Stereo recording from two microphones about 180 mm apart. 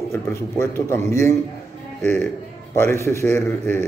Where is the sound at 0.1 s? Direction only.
15° left (ahead or behind).